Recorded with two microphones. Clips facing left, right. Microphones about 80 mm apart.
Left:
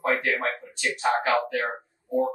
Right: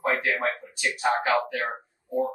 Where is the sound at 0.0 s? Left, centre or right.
Centre.